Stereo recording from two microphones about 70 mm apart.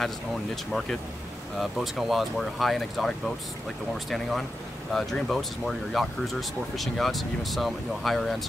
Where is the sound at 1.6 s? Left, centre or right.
Centre.